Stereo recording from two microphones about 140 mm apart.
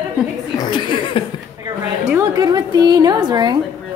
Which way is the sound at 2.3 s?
30° right (ahead or behind).